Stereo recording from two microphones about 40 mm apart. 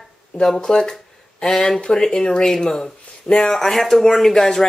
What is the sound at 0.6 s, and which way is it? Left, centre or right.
Speech, centre.